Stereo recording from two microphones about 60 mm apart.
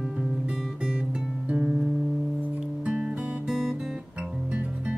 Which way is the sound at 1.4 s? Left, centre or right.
Centre.